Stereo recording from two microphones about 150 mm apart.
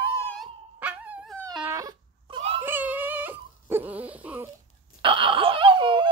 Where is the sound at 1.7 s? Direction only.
20° right (ahead or behind).